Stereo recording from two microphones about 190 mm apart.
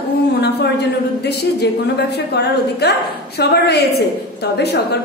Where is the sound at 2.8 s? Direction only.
60° left (ahead or behind).